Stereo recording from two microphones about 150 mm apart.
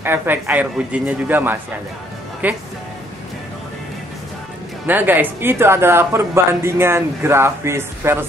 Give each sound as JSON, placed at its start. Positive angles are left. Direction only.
{"t": 0.0, "sound": "speech", "side_deg": -15}
{"t": 4.8, "sound": "speech", "side_deg": -10}